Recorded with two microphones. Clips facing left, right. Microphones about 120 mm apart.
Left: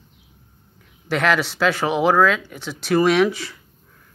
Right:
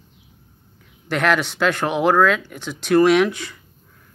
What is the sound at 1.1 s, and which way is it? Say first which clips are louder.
Speech: even; centre (ahead or behind).